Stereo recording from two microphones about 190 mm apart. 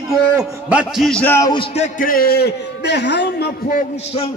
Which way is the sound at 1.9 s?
50° left (ahead or behind).